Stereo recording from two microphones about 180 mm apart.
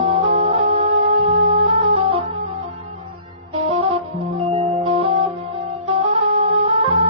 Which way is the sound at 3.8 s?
35° right (ahead or behind).